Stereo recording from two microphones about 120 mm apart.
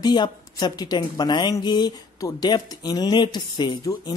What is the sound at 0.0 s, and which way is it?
A woman's voice, 35° left (ahead or behind).